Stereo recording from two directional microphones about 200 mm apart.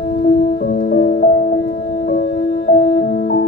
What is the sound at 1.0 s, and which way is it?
Music, 40° left (ahead or behind).